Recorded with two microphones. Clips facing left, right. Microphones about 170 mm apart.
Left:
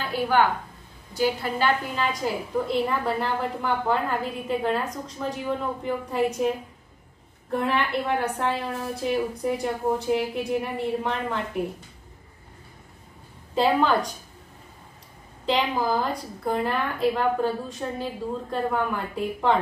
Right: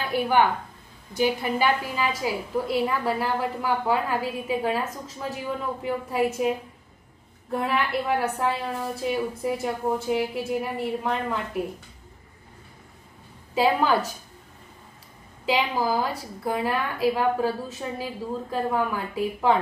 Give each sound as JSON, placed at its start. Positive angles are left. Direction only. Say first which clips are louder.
{"t": 0.1, "sound": "a woman's voice", "louder": "right 1 dB", "side_deg": -15}
{"t": 7.5, "sound": "a woman's voice", "louder": "left 1 dB", "side_deg": -5}
{"t": 13.6, "sound": "a woman's voice", "louder": "even", "side_deg": -5}
{"t": 15.4, "sound": "a woman's voice", "louder": "even", "side_deg": -5}